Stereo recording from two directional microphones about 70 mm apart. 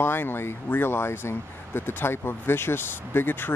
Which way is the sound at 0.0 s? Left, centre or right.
Left.